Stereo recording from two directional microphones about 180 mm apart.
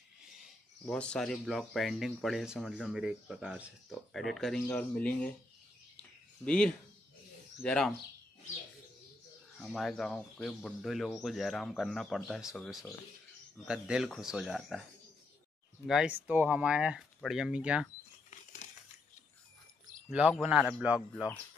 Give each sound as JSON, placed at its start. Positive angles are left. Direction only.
{"t": 0.8, "sound": "speech", "side_deg": 5}
{"t": 6.4, "sound": "speech", "side_deg": 5}
{"t": 9.6, "sound": "speech", "side_deg": 0}
{"t": 15.9, "sound": "speech", "side_deg": -5}
{"t": 18.3, "sound": "a sound", "side_deg": 40}
{"t": 20.1, "sound": "speech", "side_deg": -5}